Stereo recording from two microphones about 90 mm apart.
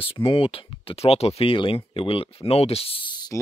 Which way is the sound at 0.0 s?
90° left.